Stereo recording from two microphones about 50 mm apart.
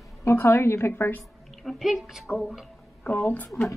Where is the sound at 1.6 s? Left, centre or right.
Centre.